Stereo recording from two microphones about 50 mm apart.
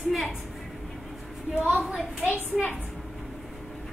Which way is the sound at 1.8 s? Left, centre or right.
Centre.